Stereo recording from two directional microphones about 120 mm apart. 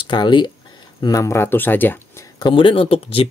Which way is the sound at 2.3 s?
40° left (ahead or behind).